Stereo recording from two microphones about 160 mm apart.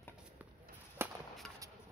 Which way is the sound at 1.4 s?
5° left (ahead or behind).